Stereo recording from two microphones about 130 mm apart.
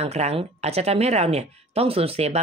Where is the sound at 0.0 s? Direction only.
55° right (ahead or behind).